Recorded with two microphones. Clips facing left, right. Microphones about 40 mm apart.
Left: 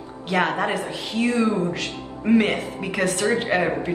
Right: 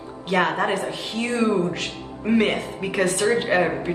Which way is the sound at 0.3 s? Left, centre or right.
Centre.